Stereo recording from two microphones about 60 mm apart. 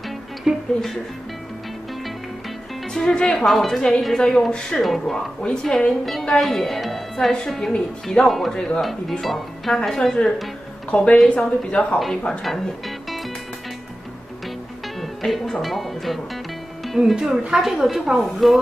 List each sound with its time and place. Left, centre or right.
0.4 s speech: centre
2.9 s a woman's voice: centre
9.2 s a woman's voice: centre
12.3 s speech: centre
15.0 s music: centre
15.6 s a woman's voice: centre
16.8 s music: centre
17.1 s a woman's voice: centre